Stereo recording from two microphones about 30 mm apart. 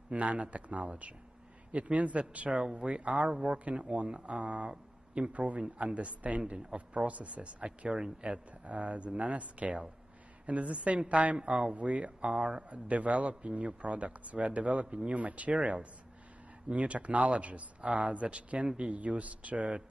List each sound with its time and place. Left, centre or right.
0.1 s a man's voice: right
2.6 s speech: right
3.0 s a man's voice: right
7.6 s speech: right
8.2 s a man's voice: right
11.3 s speech: right
11.7 s a man's voice: right